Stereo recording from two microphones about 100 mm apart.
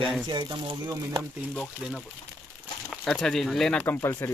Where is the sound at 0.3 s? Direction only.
50° right (ahead or behind).